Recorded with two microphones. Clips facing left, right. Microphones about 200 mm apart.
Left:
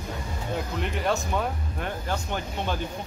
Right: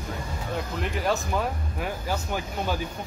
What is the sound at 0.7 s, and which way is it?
Music, centre (ahead or behind).